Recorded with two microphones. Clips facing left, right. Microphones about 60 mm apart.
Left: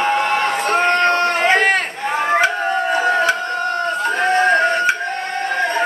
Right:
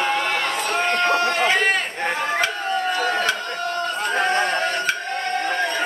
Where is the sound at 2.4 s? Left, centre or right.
Left.